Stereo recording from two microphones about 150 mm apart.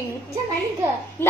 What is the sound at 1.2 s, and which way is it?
Speech, 15° left (ahead or behind).